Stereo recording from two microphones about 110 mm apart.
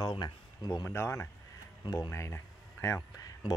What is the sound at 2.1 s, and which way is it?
Speech, 25° left (ahead or behind).